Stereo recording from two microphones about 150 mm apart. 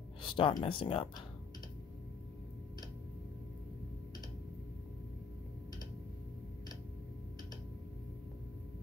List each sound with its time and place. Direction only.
0.2 s speech: 35° left (ahead or behind)